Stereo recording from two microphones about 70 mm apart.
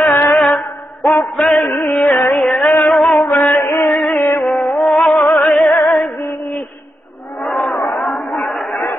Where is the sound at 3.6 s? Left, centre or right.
Left.